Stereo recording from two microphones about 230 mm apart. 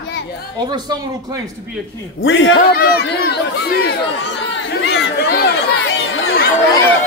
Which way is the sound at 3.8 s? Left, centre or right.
Left.